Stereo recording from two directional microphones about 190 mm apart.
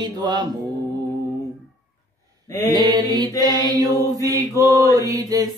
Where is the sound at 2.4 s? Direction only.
15° left (ahead or behind).